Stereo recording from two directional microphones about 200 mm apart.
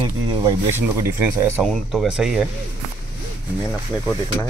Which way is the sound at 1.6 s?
Centre (ahead or behind).